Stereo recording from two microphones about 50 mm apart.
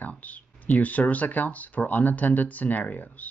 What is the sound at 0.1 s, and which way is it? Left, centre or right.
Speech, left.